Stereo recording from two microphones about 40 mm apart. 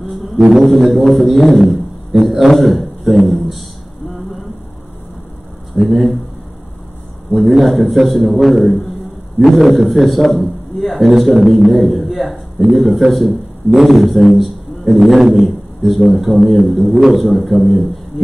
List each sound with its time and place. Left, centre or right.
0.5 s a man's voice: centre
5.8 s a man's voice: centre
7.3 s a man's voice: centre